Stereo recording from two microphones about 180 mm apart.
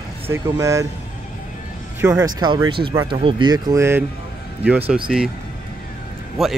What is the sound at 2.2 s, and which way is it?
Speech, 20° right (ahead or behind).